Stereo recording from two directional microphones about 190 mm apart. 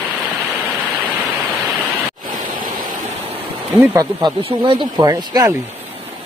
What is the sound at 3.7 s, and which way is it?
Speech, 15° right (ahead or behind).